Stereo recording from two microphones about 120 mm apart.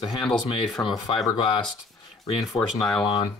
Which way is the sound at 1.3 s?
35° left (ahead or behind).